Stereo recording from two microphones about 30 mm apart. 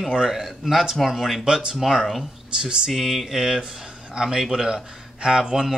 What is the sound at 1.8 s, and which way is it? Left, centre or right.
A man's voice, centre.